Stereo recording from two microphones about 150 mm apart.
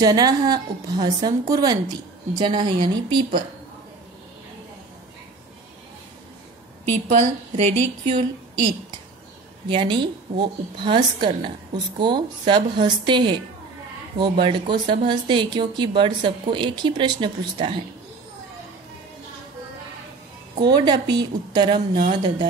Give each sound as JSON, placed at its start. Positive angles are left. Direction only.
{"t": 0.0, "sound": "a woman's voice", "side_deg": -25}
{"t": 7.1, "sound": "a woman's voice", "side_deg": -50}
{"t": 9.7, "sound": "speech", "side_deg": -35}
{"t": 14.4, "sound": "speech", "side_deg": -30}
{"t": 20.5, "sound": "speech", "side_deg": -30}